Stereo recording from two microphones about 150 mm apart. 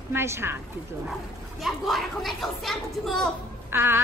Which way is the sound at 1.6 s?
Centre (ahead or behind).